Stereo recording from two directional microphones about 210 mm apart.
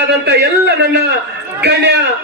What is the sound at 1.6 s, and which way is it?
Speech, 55° right (ahead or behind).